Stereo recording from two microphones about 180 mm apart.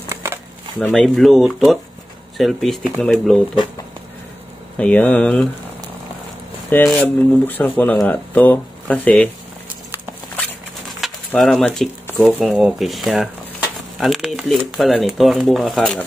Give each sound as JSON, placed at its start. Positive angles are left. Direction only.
{"t": 0.1, "sound": "a sound", "side_deg": -15}
{"t": 0.8, "sound": "speech", "side_deg": 5}
{"t": 4.7, "sound": "speech", "side_deg": 5}
{"t": 6.7, "sound": "speech", "side_deg": 10}
{"t": 10.3, "sound": "speech", "side_deg": 5}